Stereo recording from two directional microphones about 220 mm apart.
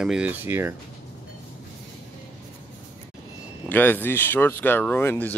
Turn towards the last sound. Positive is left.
turn(degrees=10)  # may be behind; listen again after turning